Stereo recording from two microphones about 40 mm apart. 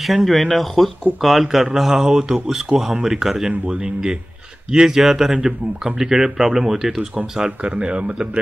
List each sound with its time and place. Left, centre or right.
0.0 s speech: centre
3.6 s speech: right; by 7.1 s centre
7.3 s speech: centre
7.7 s a man's voice: right